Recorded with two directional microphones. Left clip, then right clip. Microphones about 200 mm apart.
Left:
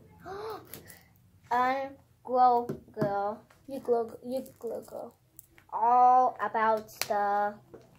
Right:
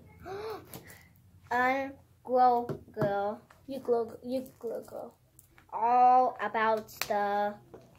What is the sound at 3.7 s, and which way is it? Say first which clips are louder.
Speech: left 1 dB; 5° left (ahead or behind).